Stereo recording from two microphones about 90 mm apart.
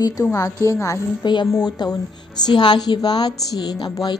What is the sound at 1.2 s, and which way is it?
Speech, 55° left (ahead or behind).